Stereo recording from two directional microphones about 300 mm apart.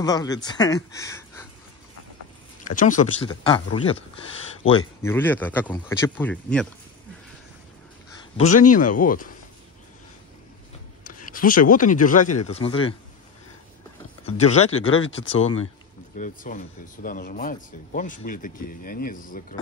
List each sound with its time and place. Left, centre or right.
0.0 s speech: centre
2.7 s speech: left
4.6 s speech: centre
8.4 s speech: left
11.1 s speech: left
14.2 s speech: left
14.7 s speech: left
15.3 s speech: centre